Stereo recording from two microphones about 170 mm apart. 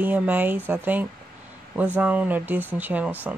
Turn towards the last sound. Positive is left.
turn(degrees=-10)  # may be behind; listen again after turning